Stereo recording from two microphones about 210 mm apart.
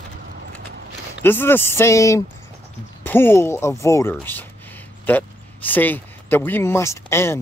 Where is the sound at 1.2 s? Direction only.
10° left (ahead or behind).